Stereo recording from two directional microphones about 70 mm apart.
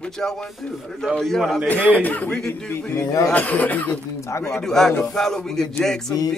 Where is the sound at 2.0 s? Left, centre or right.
Left.